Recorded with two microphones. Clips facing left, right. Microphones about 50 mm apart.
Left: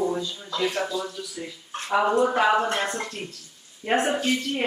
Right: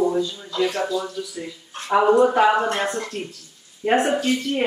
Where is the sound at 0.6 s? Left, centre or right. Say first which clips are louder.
Right 4 dB; centre.